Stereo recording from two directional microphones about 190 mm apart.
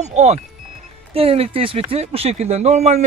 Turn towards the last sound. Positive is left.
turn(degrees=-35)  # may be behind; listen again after turning